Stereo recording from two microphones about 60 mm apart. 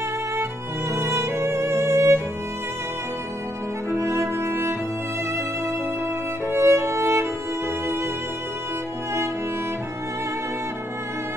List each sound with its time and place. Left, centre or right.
0.9 s music: right
3.9 s music: right
6.4 s music: right